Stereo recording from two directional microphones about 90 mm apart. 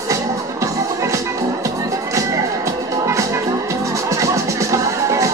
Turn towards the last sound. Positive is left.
turn(degrees=-35)  # may be behind; listen again after turning